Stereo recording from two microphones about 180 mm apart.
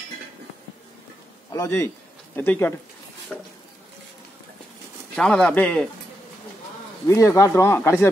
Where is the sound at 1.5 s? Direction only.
15° left (ahead or behind).